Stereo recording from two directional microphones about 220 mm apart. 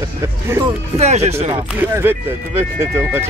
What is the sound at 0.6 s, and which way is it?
Speech, 30° right (ahead or behind).